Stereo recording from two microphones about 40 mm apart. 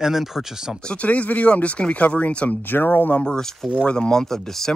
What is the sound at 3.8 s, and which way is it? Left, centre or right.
Speech, left.